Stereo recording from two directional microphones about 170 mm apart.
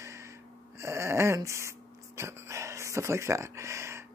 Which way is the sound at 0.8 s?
15° right (ahead or behind).